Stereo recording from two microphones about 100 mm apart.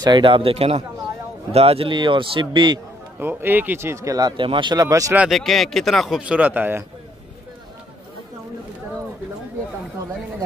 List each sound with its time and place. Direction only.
0.0 s a man's voice: 55° right (ahead or behind)
3.2 s speech: 20° right (ahead or behind)
4.4 s a man's voice: 55° right (ahead or behind)
4.7 s speech: 35° right (ahead or behind)
5.3 s speech: centre (ahead or behind); by 6.8 s 20° right (ahead or behind)